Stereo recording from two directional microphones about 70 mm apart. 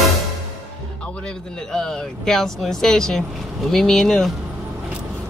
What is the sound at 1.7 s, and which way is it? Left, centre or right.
Speech, centre.